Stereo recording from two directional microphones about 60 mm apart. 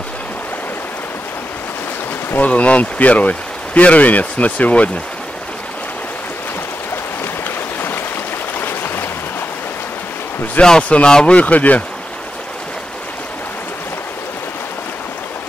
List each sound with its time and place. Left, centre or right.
2.3 s speech: left
8.5 s a sound: left
10.6 s speech: centre